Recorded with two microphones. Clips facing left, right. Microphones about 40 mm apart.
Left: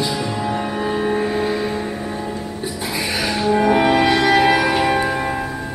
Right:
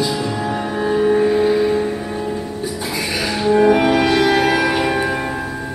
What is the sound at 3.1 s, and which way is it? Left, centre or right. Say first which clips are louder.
Music: right 3 dB; centre.